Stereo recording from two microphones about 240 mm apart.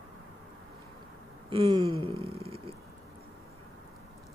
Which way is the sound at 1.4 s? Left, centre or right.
Right.